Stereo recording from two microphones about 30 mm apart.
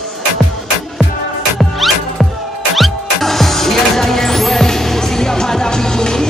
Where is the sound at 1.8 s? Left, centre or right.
Centre.